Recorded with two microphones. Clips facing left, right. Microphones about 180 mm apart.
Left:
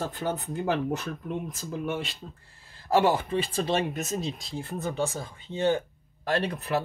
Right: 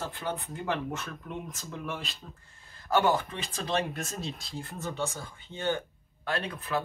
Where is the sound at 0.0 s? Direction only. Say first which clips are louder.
Left 4 dB; 40° left (ahead or behind).